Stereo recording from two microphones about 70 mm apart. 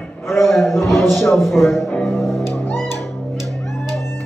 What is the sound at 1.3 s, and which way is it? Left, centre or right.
Speech, centre.